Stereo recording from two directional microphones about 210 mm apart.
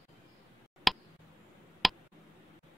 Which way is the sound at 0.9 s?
Centre (ahead or behind).